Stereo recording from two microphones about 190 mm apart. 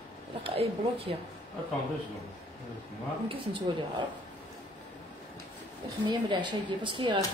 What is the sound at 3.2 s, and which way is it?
Speech, 25° right (ahead or behind).